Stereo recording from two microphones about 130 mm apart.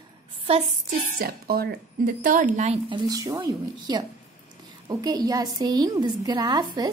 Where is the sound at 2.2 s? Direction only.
90° right; by 2.7 s 75° right (ahead or behind).